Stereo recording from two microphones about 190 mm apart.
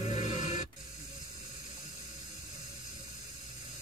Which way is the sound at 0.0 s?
35° left (ahead or behind).